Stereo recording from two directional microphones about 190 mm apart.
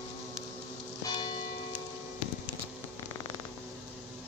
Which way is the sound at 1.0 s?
20° left (ahead or behind).